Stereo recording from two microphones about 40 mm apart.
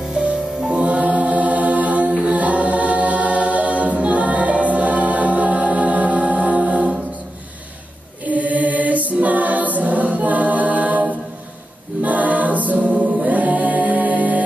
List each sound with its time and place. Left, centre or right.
0.6 s music: right
2.2 s choir: right
8.3 s choir: right
12.0 s a capella: right